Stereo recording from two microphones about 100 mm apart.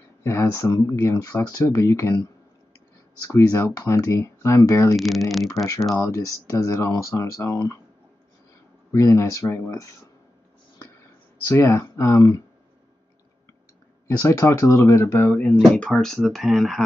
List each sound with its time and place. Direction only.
0.2 s speech: 30° left (ahead or behind)
3.2 s speech: 35° left (ahead or behind)
4.9 s speech: centre (ahead or behind)
6.0 s speech: 35° left (ahead or behind)
8.9 s speech: 30° left (ahead or behind)
11.4 s speech: 25° left (ahead or behind)
14.0 s speech: 25° left (ahead or behind)
15.3 s speech: 15° left (ahead or behind)